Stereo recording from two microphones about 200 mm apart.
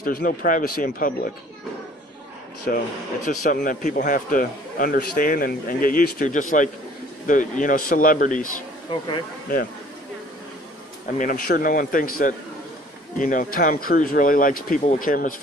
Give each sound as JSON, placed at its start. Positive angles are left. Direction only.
{"t": 0.0, "sound": "a man's voice", "side_deg": 45}
{"t": 2.7, "sound": "a man's voice", "side_deg": 45}
{"t": 11.1, "sound": "a man's voice", "side_deg": 45}